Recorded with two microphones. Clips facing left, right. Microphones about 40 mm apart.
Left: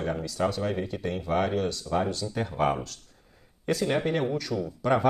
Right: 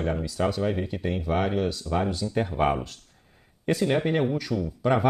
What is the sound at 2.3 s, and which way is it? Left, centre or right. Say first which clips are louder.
Speech: right 3 dB; centre.